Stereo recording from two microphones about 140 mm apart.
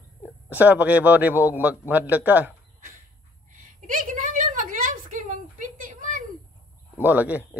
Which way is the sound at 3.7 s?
70° right (ahead or behind).